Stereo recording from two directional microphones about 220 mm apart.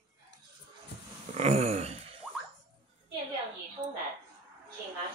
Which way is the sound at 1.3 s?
30° right (ahead or behind).